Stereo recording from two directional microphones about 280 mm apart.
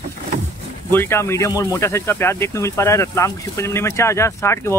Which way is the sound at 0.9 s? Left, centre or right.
Centre.